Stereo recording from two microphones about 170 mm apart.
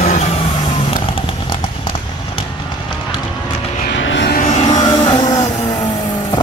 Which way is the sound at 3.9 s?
90° left.